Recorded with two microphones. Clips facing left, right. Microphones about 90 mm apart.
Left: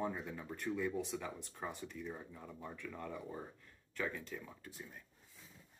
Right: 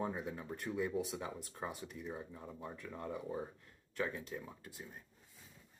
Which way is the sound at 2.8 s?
25° right (ahead or behind).